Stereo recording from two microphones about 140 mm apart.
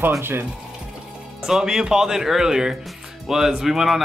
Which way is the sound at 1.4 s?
5° right (ahead or behind).